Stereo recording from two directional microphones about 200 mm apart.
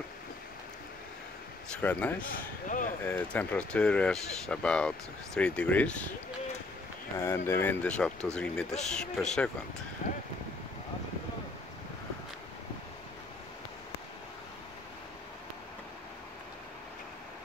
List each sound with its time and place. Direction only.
1.8 s a man's voice: 10° left (ahead or behind)
2.2 s speech: 45° left (ahead or behind)
3.0 s speech: 10° left (ahead or behind)
7.2 s speech: 10° left (ahead or behind)